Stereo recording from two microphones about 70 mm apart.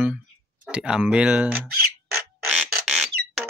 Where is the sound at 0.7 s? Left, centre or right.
Centre.